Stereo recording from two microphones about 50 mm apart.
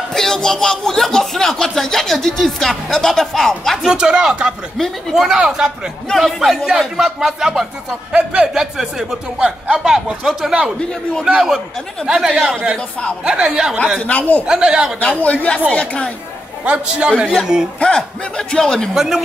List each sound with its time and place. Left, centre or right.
0.1 s speech: centre
3.8 s a man's voice: centre
8.1 s a man's voice: centre
14.0 s a man's voice: left
14.4 s a man's voice: centre
15.0 s speech: left
16.6 s a man's voice: right
18.5 s speech: centre
18.9 s a man's voice: centre